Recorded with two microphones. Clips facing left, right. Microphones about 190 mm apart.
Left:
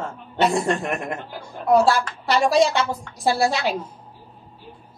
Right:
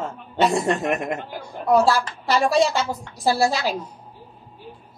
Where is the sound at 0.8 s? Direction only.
20° right (ahead or behind).